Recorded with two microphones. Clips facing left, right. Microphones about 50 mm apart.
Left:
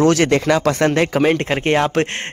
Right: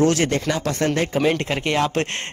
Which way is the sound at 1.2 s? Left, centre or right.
Left.